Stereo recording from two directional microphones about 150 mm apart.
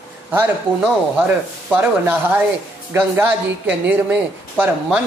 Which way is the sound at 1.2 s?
10° right (ahead or behind).